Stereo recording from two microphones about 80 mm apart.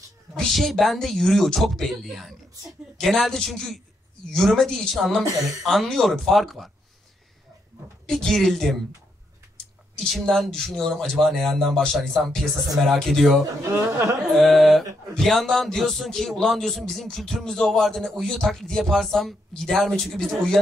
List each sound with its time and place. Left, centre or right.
0.4 s speech: centre
8.1 s speech: centre
9.9 s speech: centre
13.7 s speech: right
14.3 s speech: centre